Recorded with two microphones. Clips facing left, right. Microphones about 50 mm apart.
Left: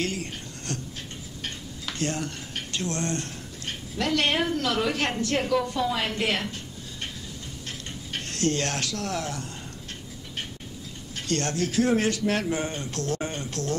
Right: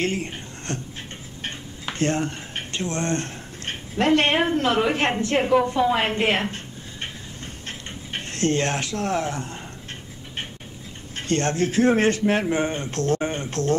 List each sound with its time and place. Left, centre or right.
0.0 s speech: right
7.6 s a sound: right
11.1 s a man's voice: right